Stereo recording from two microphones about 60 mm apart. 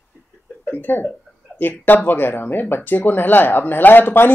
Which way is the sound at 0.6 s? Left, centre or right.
Left.